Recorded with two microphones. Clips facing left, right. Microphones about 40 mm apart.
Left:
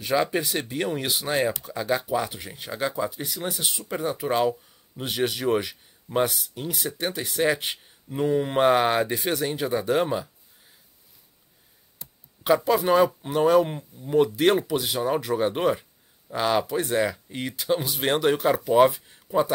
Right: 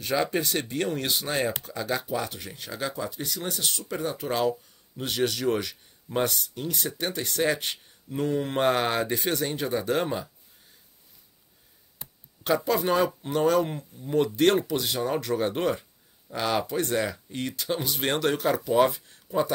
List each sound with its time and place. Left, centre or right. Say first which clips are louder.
0.0 s speech: left 2 dB; centre
12.6 s speech: left 4 dB; centre